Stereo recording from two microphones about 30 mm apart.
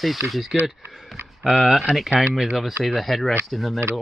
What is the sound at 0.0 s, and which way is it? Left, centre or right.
Speech, centre.